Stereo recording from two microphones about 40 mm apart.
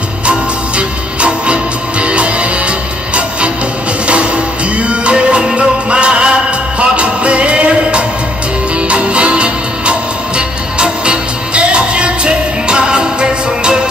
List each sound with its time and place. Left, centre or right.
0.2 s music: right
4.7 s music: right